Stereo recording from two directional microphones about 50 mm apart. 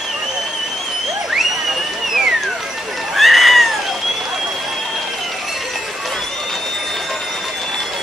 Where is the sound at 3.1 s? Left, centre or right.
Centre.